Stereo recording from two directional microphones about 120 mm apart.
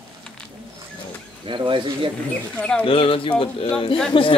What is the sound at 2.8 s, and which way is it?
Speech, 50° left (ahead or behind).